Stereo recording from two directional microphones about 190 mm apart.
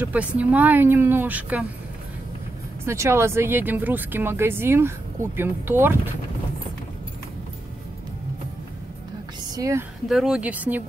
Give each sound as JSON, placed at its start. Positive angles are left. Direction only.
{"t": 0.0, "sound": "speech", "side_deg": -5}
{"t": 2.8, "sound": "speech", "side_deg": -15}
{"t": 9.6, "sound": "speech", "side_deg": -15}
{"t": 10.0, "sound": "speech", "side_deg": 0}